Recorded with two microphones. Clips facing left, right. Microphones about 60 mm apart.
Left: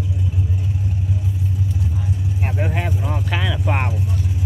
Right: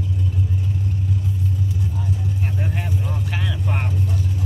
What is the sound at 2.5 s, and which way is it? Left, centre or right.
Vehicle, left.